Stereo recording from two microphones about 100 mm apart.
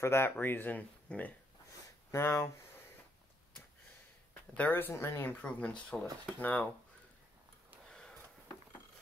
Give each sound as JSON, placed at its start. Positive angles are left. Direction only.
{"t": 0.0, "sound": "speech", "side_deg": 25}
{"t": 2.0, "sound": "speech", "side_deg": 25}
{"t": 4.3, "sound": "speech", "side_deg": 20}
{"t": 5.4, "sound": "speech", "side_deg": 10}
{"t": 7.9, "sound": "a sound", "side_deg": 10}